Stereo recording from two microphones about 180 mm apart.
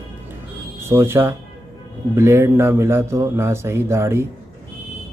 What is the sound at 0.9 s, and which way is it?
Speech, 15° right (ahead or behind).